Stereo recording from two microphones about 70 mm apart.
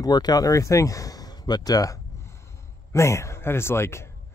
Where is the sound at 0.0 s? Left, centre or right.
Left.